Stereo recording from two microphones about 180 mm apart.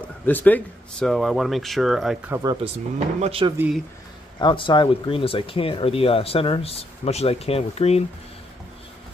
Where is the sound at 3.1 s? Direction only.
35° right (ahead or behind).